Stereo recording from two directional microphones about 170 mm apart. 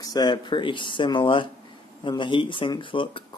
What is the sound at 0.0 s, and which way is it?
Speech, 25° left (ahead or behind).